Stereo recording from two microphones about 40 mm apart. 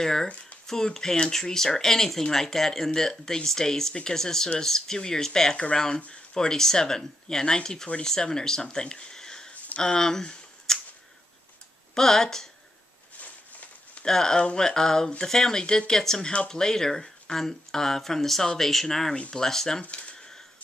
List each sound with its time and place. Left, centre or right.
0.0 s speech: centre
11.9 s speech: centre
13.2 s a sound: left
14.0 s speech: centre
19.8 s speech: left
20.2 s typewriter: centre